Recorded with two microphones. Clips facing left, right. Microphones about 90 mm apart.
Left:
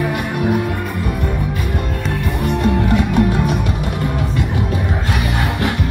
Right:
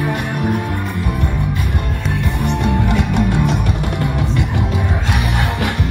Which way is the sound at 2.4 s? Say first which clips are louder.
Left 2 dB; 70° right (ahead or behind).